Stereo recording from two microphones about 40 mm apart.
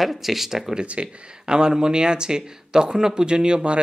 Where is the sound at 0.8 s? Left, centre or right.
Right.